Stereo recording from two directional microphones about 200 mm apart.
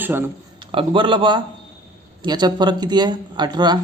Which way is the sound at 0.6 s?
25° right (ahead or behind).